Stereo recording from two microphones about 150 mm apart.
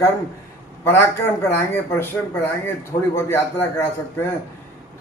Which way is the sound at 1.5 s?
15° left (ahead or behind).